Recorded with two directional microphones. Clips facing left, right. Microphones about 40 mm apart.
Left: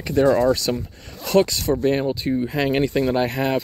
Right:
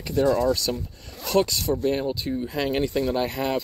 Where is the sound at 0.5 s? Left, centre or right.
Left.